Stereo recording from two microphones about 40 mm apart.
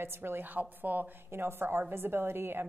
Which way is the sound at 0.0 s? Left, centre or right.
Right.